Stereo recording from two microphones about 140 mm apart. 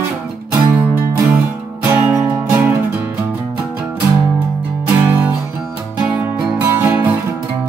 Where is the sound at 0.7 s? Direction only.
20° right (ahead or behind).